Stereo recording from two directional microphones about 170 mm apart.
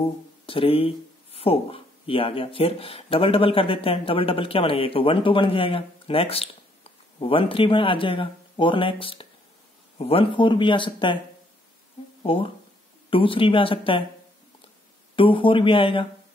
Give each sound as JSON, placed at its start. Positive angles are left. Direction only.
{"t": 0.0, "sound": "speech", "side_deg": 35}
{"t": 12.2, "sound": "speech", "side_deg": 30}
{"t": 15.1, "sound": "speech", "side_deg": 30}